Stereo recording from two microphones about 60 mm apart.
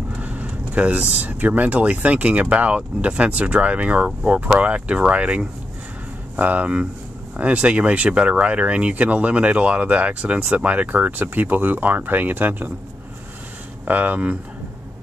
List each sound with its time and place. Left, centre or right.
0.1 s speech: right
13.8 s speech: right